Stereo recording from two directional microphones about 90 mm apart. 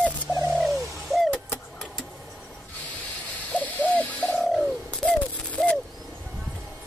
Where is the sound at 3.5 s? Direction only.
15° left (ahead or behind).